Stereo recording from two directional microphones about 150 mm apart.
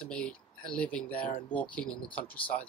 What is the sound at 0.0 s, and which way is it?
Speech, 5° left (ahead or behind).